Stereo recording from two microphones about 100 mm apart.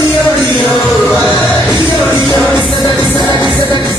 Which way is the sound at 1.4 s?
20° left (ahead or behind).